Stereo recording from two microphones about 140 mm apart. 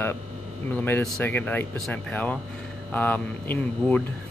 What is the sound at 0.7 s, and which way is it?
Speech, 15° left (ahead or behind).